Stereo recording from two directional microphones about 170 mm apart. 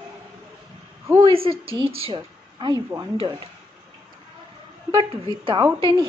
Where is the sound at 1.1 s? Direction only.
30° right (ahead or behind).